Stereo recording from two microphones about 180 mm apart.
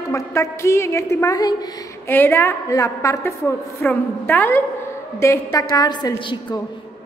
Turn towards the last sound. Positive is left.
turn(degrees=25)  # may be behind; listen again after turning